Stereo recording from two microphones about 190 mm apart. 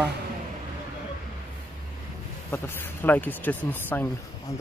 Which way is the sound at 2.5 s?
10° left (ahead or behind).